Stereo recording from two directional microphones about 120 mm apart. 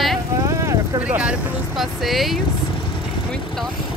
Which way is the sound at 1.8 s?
Centre (ahead or behind).